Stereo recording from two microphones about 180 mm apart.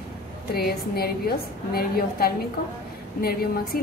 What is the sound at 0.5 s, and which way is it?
A woman's voice, 60° left (ahead or behind).